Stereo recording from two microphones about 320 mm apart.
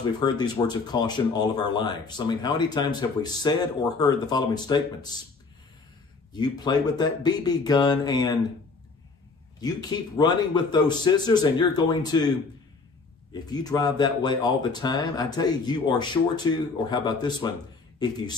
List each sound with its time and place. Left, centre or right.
0.2 s speech: centre
6.3 s speech: centre
9.6 s speech: centre